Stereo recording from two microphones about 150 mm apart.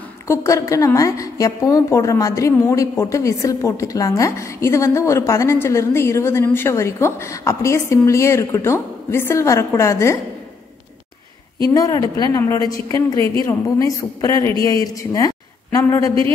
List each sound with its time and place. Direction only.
0.3 s a woman's voice: 20° left (ahead or behind)
11.7 s a woman's voice: 25° left (ahead or behind)